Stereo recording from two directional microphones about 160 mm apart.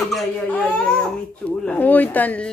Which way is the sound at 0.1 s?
5° left (ahead or behind).